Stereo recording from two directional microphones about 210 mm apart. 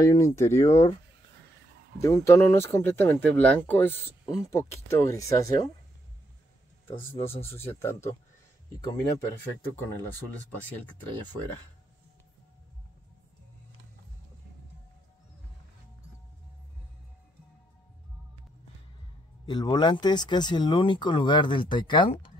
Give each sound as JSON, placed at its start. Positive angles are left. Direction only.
{"t": 0.0, "sound": "speech", "side_deg": 15}
{"t": 2.0, "sound": "speech", "side_deg": 15}
{"t": 6.9, "sound": "speech", "side_deg": 25}
{"t": 7.8, "sound": "speech", "side_deg": 15}
{"t": 9.3, "sound": "speech", "side_deg": 10}
{"t": 19.4, "sound": "speech", "side_deg": 20}